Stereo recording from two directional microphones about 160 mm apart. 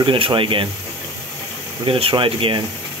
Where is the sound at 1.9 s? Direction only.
35° right (ahead or behind).